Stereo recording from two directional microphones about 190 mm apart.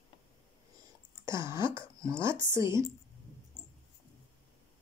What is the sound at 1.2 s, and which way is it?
Speech, 15° right (ahead or behind).